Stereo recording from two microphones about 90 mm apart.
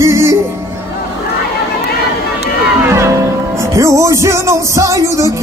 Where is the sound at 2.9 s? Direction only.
35° right (ahead or behind).